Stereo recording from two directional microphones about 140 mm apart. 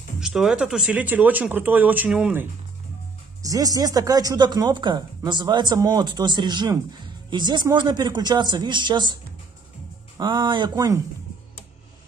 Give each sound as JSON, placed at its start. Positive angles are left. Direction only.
{"t": 0.2, "sound": "speech", "side_deg": -5}
{"t": 3.4, "sound": "speech", "side_deg": -25}